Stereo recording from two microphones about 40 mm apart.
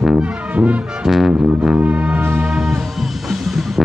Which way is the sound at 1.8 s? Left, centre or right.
Right.